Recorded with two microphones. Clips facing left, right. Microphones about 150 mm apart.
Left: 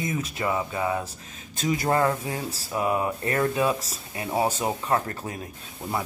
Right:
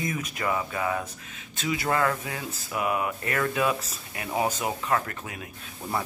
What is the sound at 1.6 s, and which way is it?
Speech, 40° left (ahead or behind).